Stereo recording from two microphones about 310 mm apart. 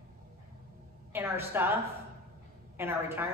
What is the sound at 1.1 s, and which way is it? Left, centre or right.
Speech, centre.